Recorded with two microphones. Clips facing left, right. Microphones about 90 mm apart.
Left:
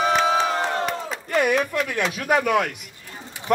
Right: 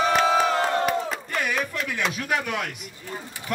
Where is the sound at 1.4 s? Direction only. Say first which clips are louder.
Left 8 dB; 50° left (ahead or behind).